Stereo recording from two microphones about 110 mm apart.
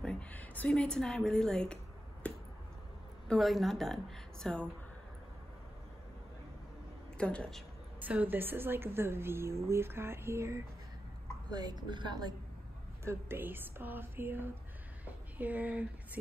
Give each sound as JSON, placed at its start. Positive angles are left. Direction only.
{"t": 0.0, "sound": "a woman's voice", "side_deg": 10}
{"t": 2.2, "sound": "finger snapping", "side_deg": 10}
{"t": 3.3, "sound": "a woman's voice", "side_deg": 0}
{"t": 7.2, "sound": "a woman's voice", "side_deg": 10}
{"t": 8.0, "sound": "speech", "side_deg": -15}
{"t": 11.5, "sound": "a woman's voice", "side_deg": -40}
{"t": 13.0, "sound": "speech", "side_deg": -20}